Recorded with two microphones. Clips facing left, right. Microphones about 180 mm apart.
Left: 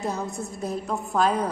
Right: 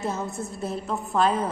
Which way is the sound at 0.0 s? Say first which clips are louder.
Even; 5° right (ahead or behind).